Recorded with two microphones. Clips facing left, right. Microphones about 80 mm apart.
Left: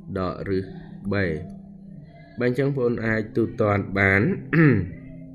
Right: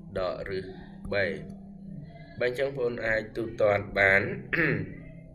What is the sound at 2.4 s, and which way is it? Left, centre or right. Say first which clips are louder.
Speech: left 6 dB; left.